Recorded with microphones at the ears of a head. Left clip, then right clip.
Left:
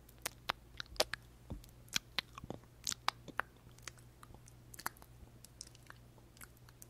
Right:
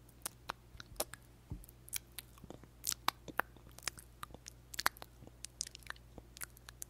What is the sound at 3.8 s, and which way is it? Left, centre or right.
Chewing, right.